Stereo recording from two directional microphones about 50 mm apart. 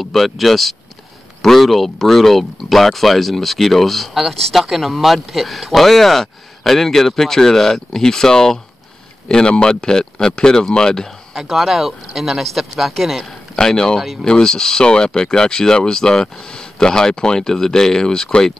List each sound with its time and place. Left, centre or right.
0.0 s speech: centre
11.3 s speech: centre
13.6 s speech: centre
13.9 s speech: centre
14.2 s speech: centre